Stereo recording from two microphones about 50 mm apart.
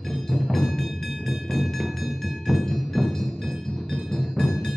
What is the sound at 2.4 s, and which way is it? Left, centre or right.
Music, centre.